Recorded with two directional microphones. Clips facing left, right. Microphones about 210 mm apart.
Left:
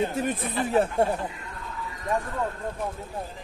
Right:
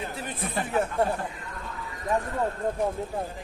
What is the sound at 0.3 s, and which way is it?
Speech, 35° left (ahead or behind).